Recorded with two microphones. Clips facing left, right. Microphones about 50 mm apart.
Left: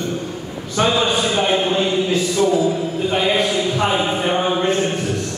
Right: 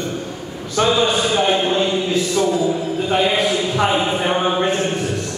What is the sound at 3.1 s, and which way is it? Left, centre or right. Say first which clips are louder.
A man's voice: right 1 dB; centre.